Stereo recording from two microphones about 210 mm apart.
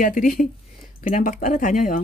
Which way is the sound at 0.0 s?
40° left (ahead or behind).